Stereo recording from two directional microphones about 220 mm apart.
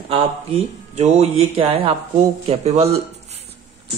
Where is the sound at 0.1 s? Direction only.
30° right (ahead or behind).